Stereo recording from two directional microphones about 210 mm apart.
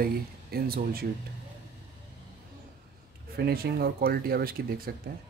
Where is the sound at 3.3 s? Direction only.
50° right (ahead or behind).